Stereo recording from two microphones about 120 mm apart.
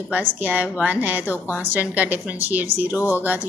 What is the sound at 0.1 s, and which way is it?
Speech, 15° right (ahead or behind).